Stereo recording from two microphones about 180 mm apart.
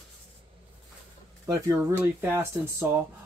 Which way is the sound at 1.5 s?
15° right (ahead or behind).